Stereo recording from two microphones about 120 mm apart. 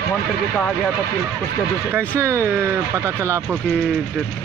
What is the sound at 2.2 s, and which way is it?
Speech, 25° right (ahead or behind).